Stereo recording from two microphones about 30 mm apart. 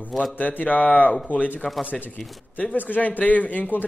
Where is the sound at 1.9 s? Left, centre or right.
Centre.